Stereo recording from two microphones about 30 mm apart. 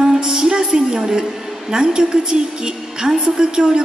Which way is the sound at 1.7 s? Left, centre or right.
Right.